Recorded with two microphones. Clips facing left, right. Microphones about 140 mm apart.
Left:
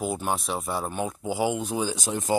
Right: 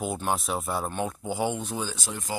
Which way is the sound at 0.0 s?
Centre (ahead or behind).